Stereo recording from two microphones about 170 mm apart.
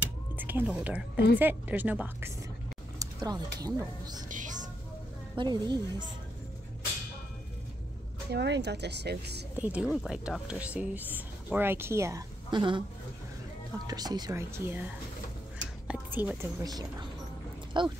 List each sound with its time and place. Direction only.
0.4 s speech: 10° right (ahead or behind)
4.3 s a sound: 50° right (ahead or behind)
5.3 s speech: 25° right (ahead or behind)
8.3 s speech: 85° right
9.6 s speech: 5° right (ahead or behind); by 12.8 s 30° right (ahead or behind)
13.8 s speech: 25° right (ahead or behind)
15.9 s whispering: 10° right (ahead or behind)
16.4 s speech: 20° right (ahead or behind)